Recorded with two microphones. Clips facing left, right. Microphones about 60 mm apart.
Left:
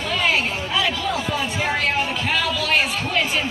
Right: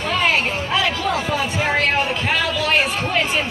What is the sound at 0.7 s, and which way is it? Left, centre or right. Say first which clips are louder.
Music: right 2 dB; right.